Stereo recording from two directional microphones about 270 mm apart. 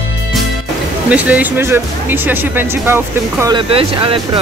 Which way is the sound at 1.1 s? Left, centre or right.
Centre.